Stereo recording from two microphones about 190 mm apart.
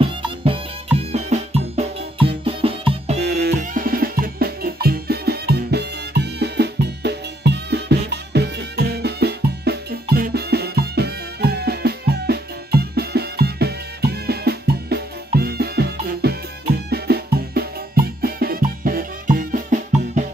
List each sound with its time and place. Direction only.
0.0 s music: 30° right (ahead or behind)
3.2 s music: 60° right (ahead or behind)